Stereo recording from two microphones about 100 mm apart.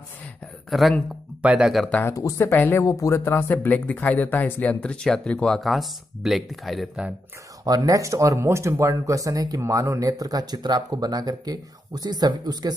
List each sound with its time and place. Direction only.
0.7 s speech: centre (ahead or behind)
1.4 s speech: 10° right (ahead or behind)
1.9 s speech: 15° left (ahead or behind)
2.1 s speech: 30° left (ahead or behind); by 6.9 s centre (ahead or behind)
7.6 s speech: 40° right (ahead or behind)